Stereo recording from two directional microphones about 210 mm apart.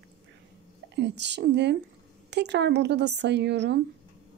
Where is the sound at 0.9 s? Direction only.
55° right (ahead or behind).